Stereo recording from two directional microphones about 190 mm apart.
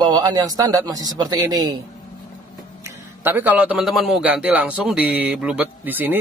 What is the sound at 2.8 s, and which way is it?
A man's voice, 10° right (ahead or behind).